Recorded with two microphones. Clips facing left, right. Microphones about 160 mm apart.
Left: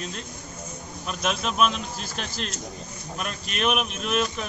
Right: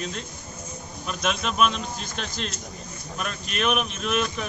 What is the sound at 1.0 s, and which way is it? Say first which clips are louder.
Speech: even; centre (ahead or behind).